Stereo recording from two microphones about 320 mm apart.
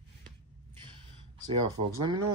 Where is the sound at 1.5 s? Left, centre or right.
Centre.